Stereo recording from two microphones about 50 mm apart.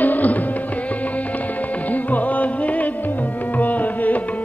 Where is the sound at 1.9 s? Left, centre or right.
Left.